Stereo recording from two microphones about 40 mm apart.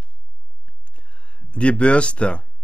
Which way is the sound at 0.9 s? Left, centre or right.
Left.